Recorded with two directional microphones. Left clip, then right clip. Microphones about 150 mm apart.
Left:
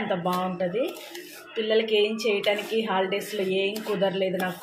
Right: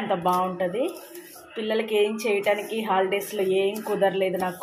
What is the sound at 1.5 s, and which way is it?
Speech, centre (ahead or behind).